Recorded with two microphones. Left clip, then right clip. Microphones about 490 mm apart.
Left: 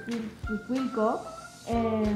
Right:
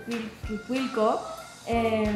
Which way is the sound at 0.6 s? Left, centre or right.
Right.